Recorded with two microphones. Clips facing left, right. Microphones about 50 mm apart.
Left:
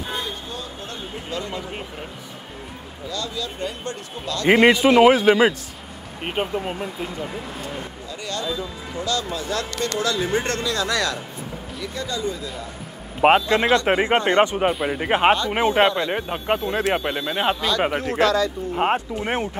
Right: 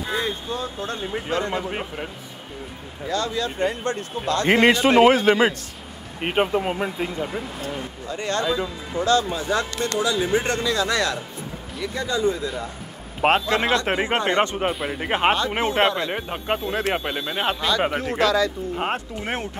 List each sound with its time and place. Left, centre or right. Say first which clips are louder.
0.1 s a sound: right 7 dB; right
3.1 s speech: right 5 dB; right
4.5 s speech: left 3 dB; centre
6.2 s speech: right 4 dB; right
9.9 s speech: right 1 dB; centre; by 12.4 s right
13.2 s speech: left 3 dB; centre